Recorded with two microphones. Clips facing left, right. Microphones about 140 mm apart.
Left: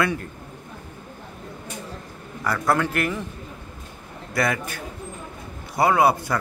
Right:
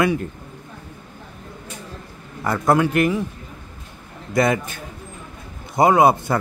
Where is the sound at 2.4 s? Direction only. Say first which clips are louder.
Right 4 dB; 20° right (ahead or behind).